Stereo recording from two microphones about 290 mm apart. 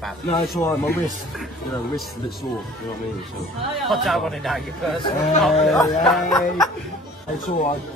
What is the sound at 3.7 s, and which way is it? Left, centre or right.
Speech, centre.